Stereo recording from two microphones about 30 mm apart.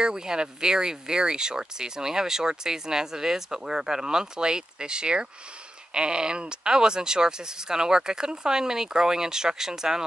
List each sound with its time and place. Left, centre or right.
0.0 s speech: right